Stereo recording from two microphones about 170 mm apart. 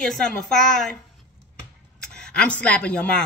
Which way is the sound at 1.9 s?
5° left (ahead or behind).